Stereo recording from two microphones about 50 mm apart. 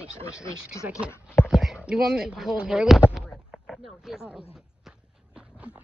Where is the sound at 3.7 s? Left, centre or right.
Centre.